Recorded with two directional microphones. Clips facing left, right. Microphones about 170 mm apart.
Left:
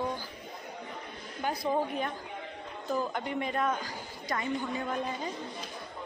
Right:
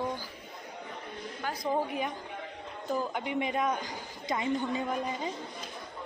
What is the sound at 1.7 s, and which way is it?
A woman's voice, 10° right (ahead or behind).